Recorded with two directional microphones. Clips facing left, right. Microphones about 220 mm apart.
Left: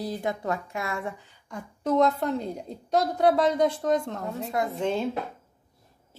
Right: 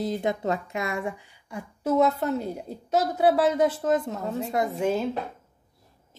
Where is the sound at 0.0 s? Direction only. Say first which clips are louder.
Right 3 dB; 20° right (ahead or behind); by 4.5 s centre (ahead or behind).